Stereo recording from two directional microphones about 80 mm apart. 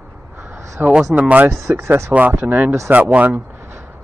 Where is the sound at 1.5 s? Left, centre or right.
Right.